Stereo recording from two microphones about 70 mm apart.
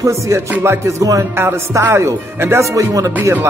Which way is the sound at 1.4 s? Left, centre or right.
Right.